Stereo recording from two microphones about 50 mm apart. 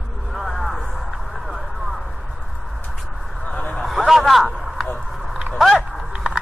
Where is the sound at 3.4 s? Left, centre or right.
Left.